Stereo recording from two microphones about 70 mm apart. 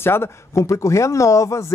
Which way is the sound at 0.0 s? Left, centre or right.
Left.